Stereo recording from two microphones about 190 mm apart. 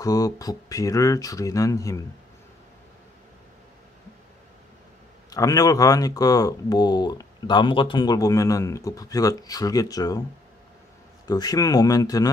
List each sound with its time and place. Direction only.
0.0 s speech: 20° left (ahead or behind)
5.3 s speech: 20° left (ahead or behind)
11.2 s speech: 20° left (ahead or behind)